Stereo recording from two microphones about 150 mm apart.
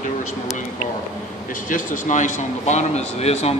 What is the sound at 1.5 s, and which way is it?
A man's voice, 60° left (ahead or behind).